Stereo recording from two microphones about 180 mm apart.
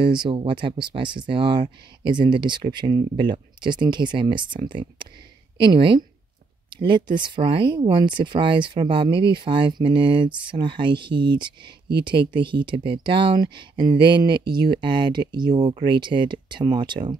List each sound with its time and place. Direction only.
0.0 s speech: 25° right (ahead or behind)